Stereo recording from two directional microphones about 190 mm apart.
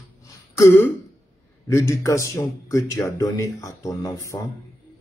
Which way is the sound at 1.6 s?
15° left (ahead or behind).